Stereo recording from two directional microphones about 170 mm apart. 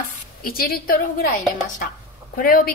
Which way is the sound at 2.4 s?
55° left (ahead or behind).